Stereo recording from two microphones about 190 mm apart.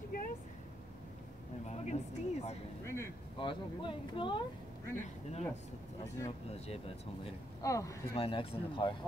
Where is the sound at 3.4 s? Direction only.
25° left (ahead or behind).